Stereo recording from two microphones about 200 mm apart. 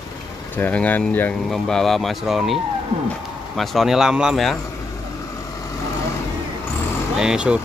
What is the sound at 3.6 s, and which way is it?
Speech, centre (ahead or behind).